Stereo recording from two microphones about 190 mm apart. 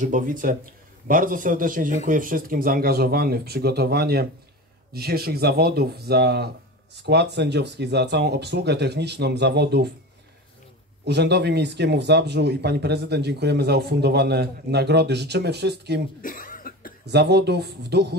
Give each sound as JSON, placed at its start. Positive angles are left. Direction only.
{"t": 0.0, "sound": "speech", "side_deg": -45}
{"t": 11.1, "sound": "speech", "side_deg": -60}
{"t": 16.2, "sound": "cough", "side_deg": 45}
{"t": 17.0, "sound": "speech", "side_deg": -60}